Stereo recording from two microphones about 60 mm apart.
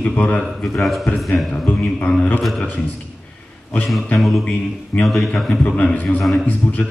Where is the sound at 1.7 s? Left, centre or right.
Left.